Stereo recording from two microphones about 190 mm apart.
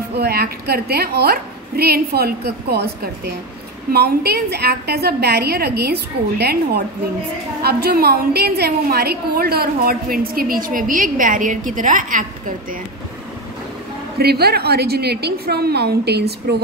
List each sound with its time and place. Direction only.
0.2 s a woman's voice: 55° right (ahead or behind)
14.1 s a woman's voice: 55° right (ahead or behind)